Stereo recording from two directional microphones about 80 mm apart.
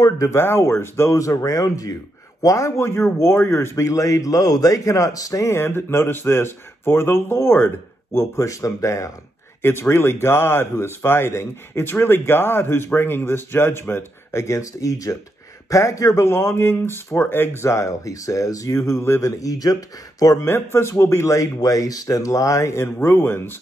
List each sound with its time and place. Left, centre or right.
0.0 s a man's voice: left
20.4 s a man's voice: left